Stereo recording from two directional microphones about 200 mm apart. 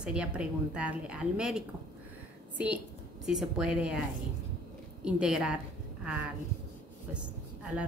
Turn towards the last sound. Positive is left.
turn(degrees=-5)  # may be behind; listen again after turning